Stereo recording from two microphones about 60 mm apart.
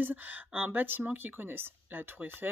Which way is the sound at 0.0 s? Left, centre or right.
Right.